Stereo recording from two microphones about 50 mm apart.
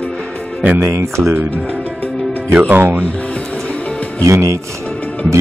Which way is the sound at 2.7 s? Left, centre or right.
Right.